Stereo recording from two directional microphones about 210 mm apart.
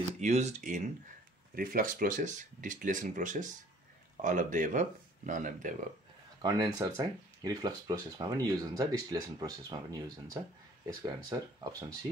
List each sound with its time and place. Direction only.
0.2 s speech: 35° right (ahead or behind)
6.4 s speech: 20° right (ahead or behind)